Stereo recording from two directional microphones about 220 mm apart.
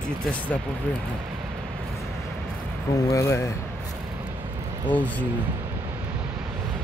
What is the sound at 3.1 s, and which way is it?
Speech, 15° left (ahead or behind).